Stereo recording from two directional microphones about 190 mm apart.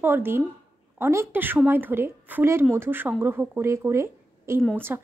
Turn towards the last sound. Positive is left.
turn(degrees=-10)  # may be behind; listen again after turning